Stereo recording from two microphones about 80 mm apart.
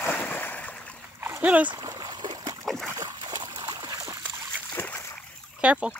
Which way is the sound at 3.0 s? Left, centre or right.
Right.